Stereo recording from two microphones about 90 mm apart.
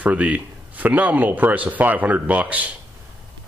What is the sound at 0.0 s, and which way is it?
Speech, 15° right (ahead or behind).